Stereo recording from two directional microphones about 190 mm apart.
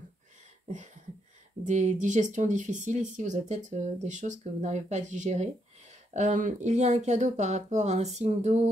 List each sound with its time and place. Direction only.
1.7 s speech: 40° right (ahead or behind)